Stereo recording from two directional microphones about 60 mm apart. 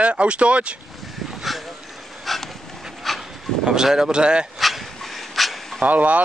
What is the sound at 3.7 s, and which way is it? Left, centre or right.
Speech, centre.